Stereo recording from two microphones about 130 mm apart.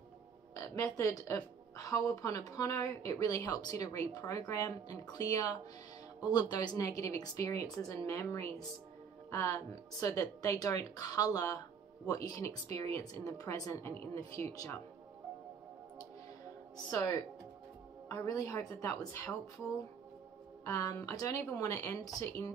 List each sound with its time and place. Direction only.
0.9 s a woman's voice: 25° left (ahead or behind)
16.9 s a woman's voice: 25° left (ahead or behind)
20.6 s a woman's voice: 25° left (ahead or behind)